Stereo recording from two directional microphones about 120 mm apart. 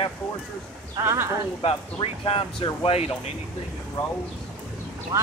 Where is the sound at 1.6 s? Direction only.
50° left (ahead or behind).